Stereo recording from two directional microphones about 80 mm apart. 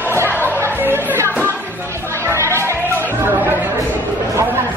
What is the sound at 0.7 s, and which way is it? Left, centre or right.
Music, right.